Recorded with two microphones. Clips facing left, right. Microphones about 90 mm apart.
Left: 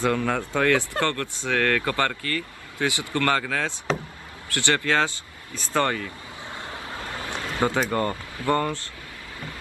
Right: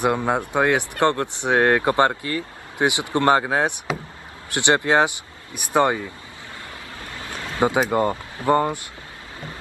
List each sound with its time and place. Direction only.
0.0 s speech: 20° right (ahead or behind)
6.7 s vehicle: 30° left (ahead or behind)
7.9 s speech: 15° right (ahead or behind)